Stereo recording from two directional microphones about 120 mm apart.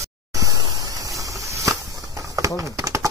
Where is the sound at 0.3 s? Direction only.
30° right (ahead or behind).